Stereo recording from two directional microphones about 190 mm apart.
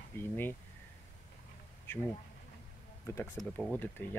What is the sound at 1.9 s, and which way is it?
Speech, 10° left (ahead or behind).